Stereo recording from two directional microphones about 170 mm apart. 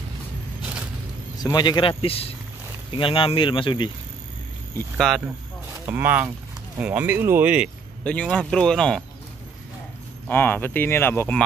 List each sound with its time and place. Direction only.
1.4 s speech: 25° left (ahead or behind)
4.9 s speech: centre (ahead or behind)
5.9 s speech: 10° right (ahead or behind)
8.0 s speech: 5° left (ahead or behind)
10.2 s speech: 10° left (ahead or behind)